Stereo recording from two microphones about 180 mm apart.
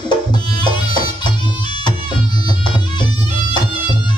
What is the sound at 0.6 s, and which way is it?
Music, 25° left (ahead or behind).